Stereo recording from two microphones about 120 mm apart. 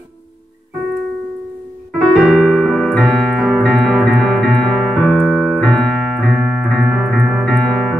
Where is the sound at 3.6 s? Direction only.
Centre (ahead or behind).